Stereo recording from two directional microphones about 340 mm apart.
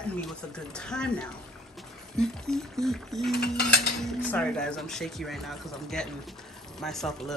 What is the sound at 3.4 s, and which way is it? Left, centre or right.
Mechanisms, left.